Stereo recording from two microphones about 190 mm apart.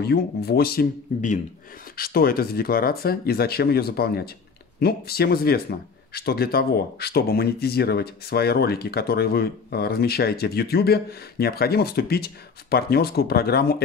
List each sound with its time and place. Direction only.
0.0 s speech: 55° left (ahead or behind)